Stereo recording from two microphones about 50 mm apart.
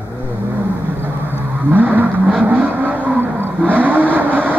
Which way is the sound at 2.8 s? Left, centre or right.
Right.